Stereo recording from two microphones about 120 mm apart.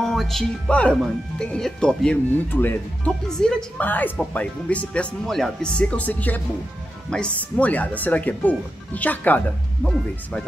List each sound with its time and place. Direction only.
0.0 s speech: centre (ahead or behind)
3.3 s speech: 5° left (ahead or behind)